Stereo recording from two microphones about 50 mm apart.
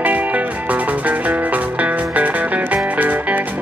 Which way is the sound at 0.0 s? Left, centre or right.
Right.